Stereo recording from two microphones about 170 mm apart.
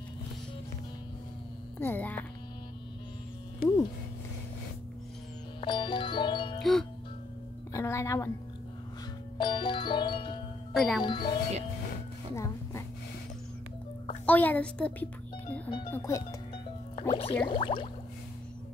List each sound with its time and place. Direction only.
1.8 s speech: 10° left (ahead or behind)
5.6 s music: 30° left (ahead or behind)
6.6 s music: centre (ahead or behind)
7.7 s music: 20° left (ahead or behind)
9.4 s music: 30° left (ahead or behind)
10.7 s music: centre (ahead or behind)
11.0 s music: 25° left (ahead or behind)
12.4 s a sound: 15° left (ahead or behind)
14.2 s a sound: 10° left (ahead or behind)
15.9 s speech: 15° left (ahead or behind)
17.1 s a sound: 35° left (ahead or behind)